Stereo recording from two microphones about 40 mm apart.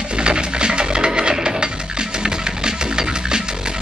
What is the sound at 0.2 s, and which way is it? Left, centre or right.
Music, right.